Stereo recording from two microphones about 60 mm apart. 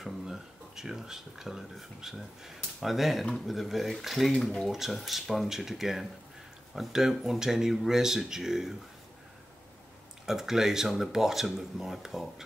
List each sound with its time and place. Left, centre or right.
0.0 s speech: centre
10.2 s speech: centre